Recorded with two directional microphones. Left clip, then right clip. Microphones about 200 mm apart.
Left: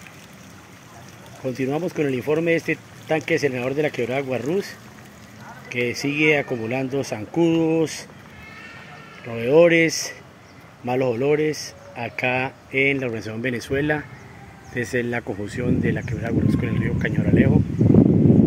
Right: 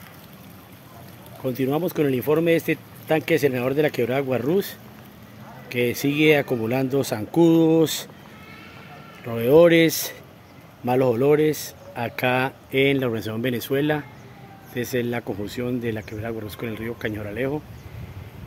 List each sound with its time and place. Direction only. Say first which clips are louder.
1.4 s speech: right 1 dB; 15° right (ahead or behind)
5.8 s speech: even; 20° right (ahead or behind)
9.2 s speech: even; 20° right (ahead or behind)
14.7 s speech: left 1 dB; centre (ahead or behind)